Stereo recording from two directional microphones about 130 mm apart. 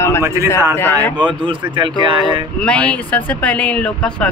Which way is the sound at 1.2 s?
35° right (ahead or behind).